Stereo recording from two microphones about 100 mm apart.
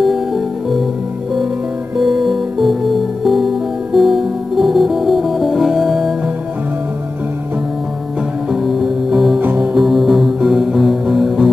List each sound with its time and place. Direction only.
0.0 s music: centre (ahead or behind)
2.0 s music: 5° right (ahead or behind)
8.5 s music: centre (ahead or behind)
9.4 s music: 20° right (ahead or behind)
9.8 s music: centre (ahead or behind)